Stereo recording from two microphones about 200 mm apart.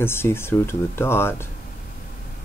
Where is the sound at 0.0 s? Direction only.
10° left (ahead or behind).